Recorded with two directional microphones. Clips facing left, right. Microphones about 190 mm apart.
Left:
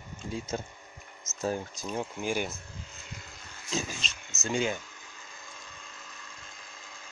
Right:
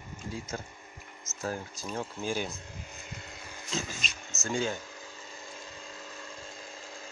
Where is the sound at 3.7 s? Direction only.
15° left (ahead or behind).